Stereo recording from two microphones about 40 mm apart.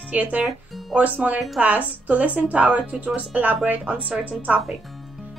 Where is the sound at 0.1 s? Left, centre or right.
Right.